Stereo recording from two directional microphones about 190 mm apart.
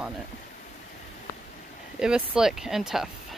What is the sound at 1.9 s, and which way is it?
Speech, 5° right (ahead or behind).